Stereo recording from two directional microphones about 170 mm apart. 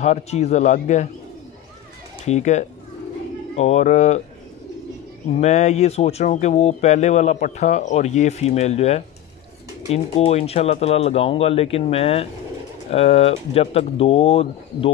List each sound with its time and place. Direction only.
0.0 s speech: 40° left (ahead or behind)
2.2 s speech: 40° left (ahead or behind)
5.3 s speech: 40° left (ahead or behind)